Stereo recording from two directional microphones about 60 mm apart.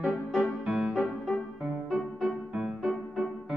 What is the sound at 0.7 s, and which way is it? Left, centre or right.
Music, centre.